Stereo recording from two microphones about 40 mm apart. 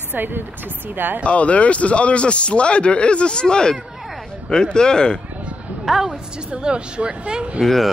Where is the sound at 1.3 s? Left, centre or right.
Left.